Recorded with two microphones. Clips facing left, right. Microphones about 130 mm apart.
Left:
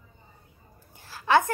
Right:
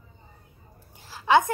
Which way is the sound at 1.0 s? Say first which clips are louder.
Right 2 dB; 15° right (ahead or behind).